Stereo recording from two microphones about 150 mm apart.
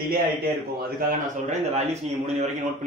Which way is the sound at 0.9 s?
70° right (ahead or behind).